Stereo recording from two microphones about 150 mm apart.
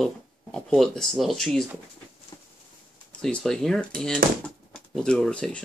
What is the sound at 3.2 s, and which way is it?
Speech, 5° left (ahead or behind).